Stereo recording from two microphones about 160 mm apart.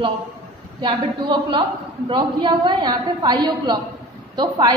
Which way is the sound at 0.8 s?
30° right (ahead or behind).